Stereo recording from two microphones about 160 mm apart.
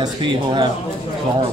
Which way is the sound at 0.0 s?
30° right (ahead or behind).